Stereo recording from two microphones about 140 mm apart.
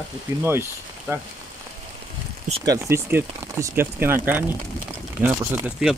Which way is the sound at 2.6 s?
20° right (ahead or behind).